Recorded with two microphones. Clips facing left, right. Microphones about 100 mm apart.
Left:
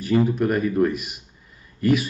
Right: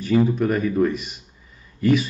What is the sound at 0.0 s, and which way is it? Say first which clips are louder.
Speech: right 1 dB; 5° left (ahead or behind).